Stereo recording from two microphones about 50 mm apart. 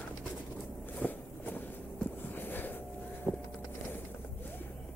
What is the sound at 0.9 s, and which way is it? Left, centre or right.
Walk, left.